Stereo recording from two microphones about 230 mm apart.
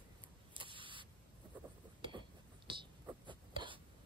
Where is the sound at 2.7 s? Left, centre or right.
Right.